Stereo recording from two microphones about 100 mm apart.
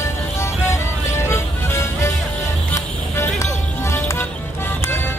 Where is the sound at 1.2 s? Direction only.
25° left (ahead or behind).